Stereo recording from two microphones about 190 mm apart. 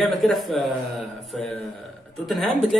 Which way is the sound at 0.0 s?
Centre (ahead or behind).